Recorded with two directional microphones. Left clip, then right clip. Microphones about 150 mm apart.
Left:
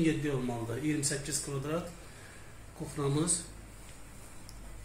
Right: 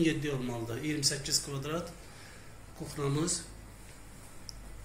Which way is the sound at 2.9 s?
40° left (ahead or behind).